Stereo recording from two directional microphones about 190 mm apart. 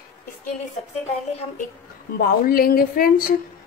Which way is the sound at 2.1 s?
50° left (ahead or behind).